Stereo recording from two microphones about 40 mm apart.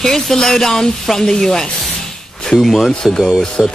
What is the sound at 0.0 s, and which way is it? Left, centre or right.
Speech, centre.